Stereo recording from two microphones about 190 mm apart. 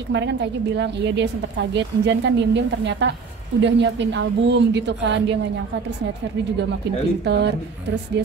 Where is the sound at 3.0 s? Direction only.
70° right (ahead or behind).